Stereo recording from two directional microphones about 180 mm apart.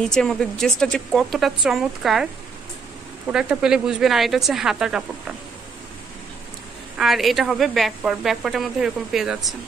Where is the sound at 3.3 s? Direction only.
5° right (ahead or behind).